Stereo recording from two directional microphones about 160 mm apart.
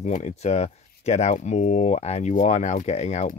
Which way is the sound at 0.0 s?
45° left (ahead or behind).